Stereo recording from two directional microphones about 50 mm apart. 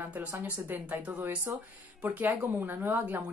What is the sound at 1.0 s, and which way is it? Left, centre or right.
Speech, right.